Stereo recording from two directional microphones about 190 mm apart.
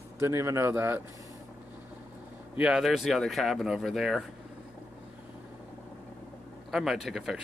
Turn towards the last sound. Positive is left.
turn(degrees=-5)  # may be behind; listen again after turning